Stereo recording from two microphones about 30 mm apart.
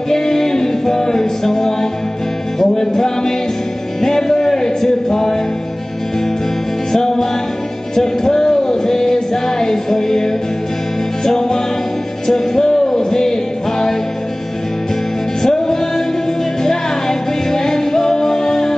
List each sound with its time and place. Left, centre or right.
0.1 s music: centre
6.9 s music: centre
15.4 s music: centre